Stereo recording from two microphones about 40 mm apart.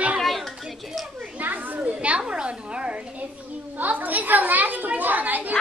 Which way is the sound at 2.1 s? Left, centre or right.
Right.